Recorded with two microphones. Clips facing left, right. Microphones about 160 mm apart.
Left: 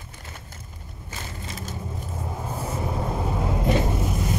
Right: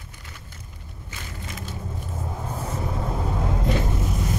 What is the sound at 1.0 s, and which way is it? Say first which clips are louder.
Vehicle: left 1 dB; 40° left (ahead or behind).